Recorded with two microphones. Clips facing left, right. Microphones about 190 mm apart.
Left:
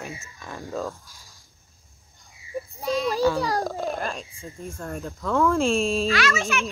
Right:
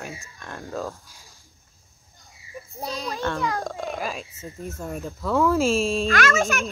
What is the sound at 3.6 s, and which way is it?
Speech, centre (ahead or behind).